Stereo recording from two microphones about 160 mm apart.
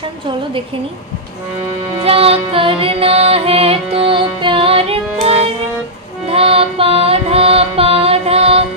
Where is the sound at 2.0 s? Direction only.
40° right (ahead or behind).